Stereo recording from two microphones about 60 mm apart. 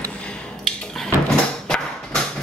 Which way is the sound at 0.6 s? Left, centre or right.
Centre.